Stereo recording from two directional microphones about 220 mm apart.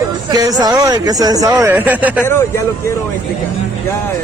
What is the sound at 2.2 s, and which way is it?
Speech, 10° left (ahead or behind).